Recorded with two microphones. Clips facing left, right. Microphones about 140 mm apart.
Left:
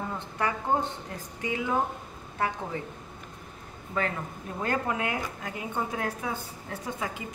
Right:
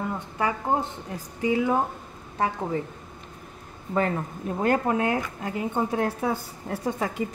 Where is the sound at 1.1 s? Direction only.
30° right (ahead or behind).